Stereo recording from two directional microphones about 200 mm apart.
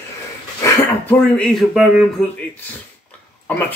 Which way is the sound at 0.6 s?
15° left (ahead or behind).